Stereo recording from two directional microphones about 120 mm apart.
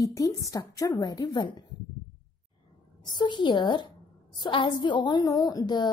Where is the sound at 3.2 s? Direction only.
40° left (ahead or behind).